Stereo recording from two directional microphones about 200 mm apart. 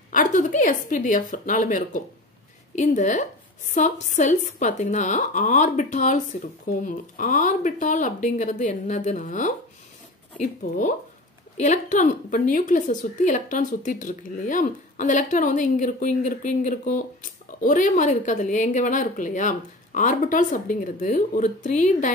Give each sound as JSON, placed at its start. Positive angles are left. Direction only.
{"t": 0.1, "sound": "a woman's voice", "side_deg": 40}